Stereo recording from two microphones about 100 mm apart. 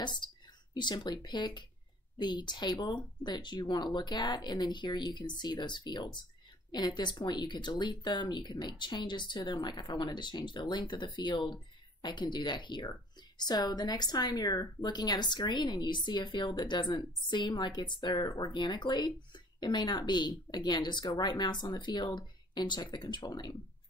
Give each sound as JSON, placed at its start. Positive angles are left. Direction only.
{"t": 0.0, "sound": "speech", "side_deg": 50}